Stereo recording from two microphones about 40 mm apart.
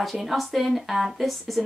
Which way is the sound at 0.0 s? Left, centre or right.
Centre.